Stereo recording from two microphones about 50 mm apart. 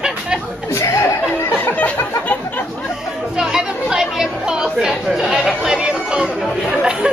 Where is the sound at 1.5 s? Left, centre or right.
Left.